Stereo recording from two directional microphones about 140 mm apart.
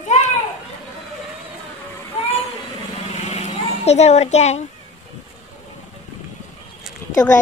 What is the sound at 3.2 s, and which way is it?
Vehicle, 55° left (ahead or behind).